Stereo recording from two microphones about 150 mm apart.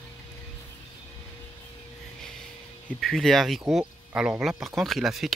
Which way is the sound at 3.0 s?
Centre (ahead or behind).